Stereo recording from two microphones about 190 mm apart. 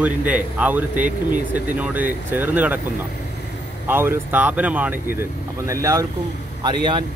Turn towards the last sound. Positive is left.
turn(degrees=-25)  # may be behind; listen again after turning